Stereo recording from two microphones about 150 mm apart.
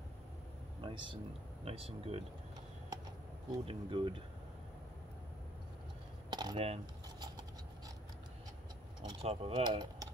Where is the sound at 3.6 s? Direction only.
35° right (ahead or behind).